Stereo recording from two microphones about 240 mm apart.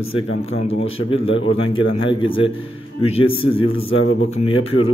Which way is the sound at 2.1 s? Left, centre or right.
Left.